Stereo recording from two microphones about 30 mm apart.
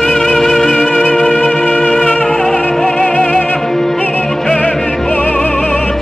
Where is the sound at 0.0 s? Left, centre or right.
Centre.